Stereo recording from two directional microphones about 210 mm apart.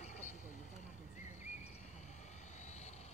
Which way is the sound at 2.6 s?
30° left (ahead or behind).